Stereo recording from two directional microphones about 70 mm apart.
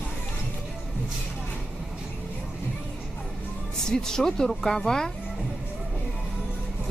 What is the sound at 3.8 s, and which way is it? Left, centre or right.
A woman's voice, centre.